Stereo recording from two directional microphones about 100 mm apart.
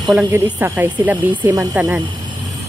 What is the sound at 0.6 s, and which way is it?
Speech, 20° right (ahead or behind).